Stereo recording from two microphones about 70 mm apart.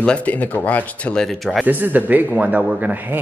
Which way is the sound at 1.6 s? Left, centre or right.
Right.